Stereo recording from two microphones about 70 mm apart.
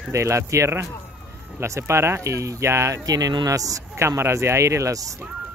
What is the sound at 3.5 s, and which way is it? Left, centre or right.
Speech, right.